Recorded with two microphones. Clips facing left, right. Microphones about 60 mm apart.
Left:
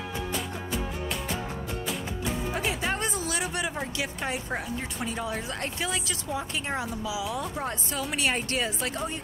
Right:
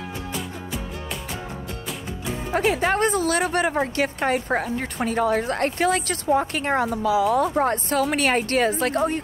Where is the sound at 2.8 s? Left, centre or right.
Right.